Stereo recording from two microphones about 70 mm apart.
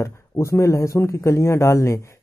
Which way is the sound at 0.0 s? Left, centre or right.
Left.